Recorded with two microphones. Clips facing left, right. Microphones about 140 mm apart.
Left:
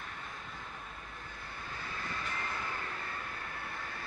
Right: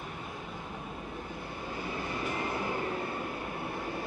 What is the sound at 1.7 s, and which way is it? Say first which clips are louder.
Train: right 7 dB; 20° right (ahead or behind).